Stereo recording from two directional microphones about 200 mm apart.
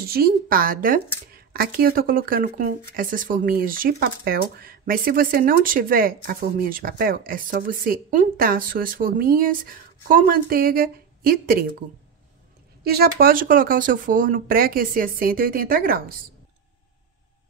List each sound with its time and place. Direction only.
0.0 s speech: 50° right (ahead or behind)
12.8 s speech: 50° right (ahead or behind)